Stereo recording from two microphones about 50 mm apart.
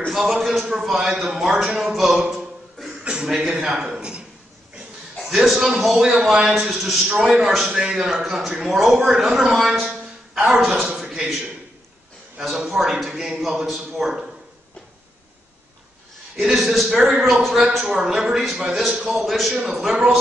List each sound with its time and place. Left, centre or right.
0.1 s a man's voice: centre
2.0 s a sound: centre
3.0 s a sound: centre
3.3 s a man's voice: centre
3.8 s speech: right
5.3 s a man's voice: centre
11.0 s a sound: centre
12.5 s a man's voice: centre
16.3 s a man's voice: centre
17.6 s a man's voice: centre